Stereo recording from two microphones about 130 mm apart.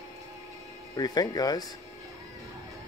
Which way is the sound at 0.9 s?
30° left (ahead or behind).